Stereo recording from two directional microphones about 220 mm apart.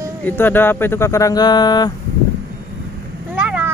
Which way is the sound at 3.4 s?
5° right (ahead or behind).